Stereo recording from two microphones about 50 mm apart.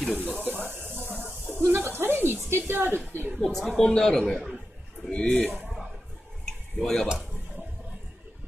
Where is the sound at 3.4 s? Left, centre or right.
Centre.